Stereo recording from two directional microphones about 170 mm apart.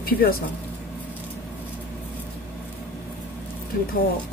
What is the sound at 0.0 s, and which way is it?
Speech, 60° left (ahead or behind).